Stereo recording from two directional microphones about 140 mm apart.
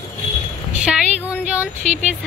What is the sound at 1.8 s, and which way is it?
Speech, 55° right (ahead or behind).